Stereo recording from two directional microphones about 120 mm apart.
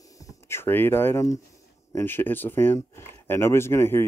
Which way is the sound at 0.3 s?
20° left (ahead or behind).